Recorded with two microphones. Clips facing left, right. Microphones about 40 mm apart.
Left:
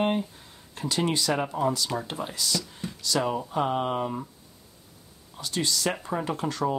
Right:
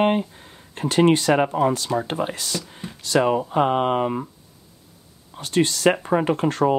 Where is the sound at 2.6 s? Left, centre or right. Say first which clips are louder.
Even; right.